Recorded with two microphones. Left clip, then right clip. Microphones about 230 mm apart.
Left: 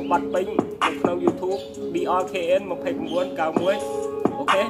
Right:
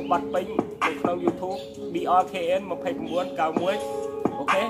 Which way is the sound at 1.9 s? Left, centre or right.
Centre.